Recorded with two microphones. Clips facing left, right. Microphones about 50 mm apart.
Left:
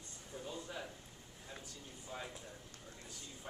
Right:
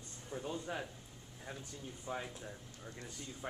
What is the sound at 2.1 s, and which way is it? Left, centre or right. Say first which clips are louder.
Speech: right 6 dB; centre.